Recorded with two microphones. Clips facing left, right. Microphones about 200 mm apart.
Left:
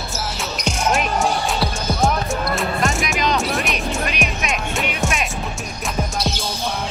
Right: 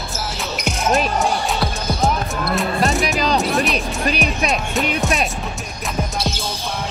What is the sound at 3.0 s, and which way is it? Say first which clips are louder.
Music: right 2 dB; 35° right (ahead or behind).